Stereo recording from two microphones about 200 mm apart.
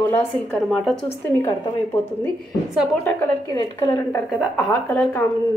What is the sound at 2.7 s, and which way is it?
Speech, 5° left (ahead or behind).